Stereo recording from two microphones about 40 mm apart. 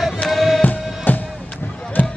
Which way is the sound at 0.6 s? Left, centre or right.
Left.